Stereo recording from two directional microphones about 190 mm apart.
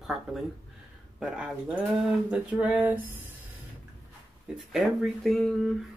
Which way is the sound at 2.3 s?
5° right (ahead or behind).